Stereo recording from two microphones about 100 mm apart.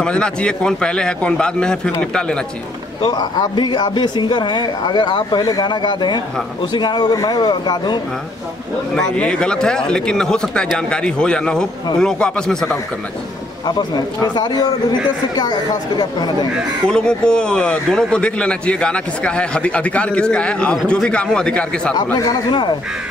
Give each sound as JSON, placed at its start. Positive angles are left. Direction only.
{"t": 0.0, "sound": "a man's voice", "side_deg": 10}
{"t": 3.0, "sound": "speech", "side_deg": 45}
{"t": 8.9, "sound": "a man's voice", "side_deg": 10}
{"t": 13.7, "sound": "speech", "side_deg": 45}
{"t": 16.0, "sound": "speech", "side_deg": 45}
{"t": 16.9, "sound": "a man's voice", "side_deg": 10}
{"t": 21.9, "sound": "speech", "side_deg": 35}
{"t": 22.5, "sound": "speech", "side_deg": 50}